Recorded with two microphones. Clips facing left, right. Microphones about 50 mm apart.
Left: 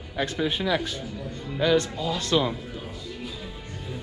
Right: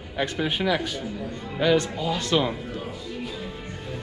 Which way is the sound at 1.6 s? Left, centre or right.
Right.